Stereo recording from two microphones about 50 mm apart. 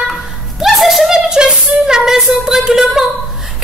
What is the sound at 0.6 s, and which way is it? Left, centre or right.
Speech, centre.